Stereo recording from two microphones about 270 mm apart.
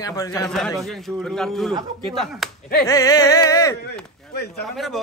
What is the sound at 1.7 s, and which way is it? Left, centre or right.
Speech, centre.